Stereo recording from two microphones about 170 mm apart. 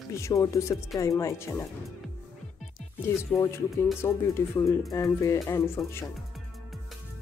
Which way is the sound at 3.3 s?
25° left (ahead or behind).